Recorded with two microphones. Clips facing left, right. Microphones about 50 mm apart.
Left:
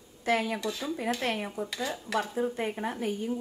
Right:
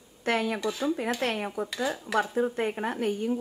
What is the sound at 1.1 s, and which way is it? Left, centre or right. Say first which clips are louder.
Dishes: right 2 dB; right.